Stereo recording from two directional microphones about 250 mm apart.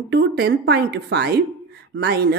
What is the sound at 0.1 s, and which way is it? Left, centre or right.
A woman's voice, right.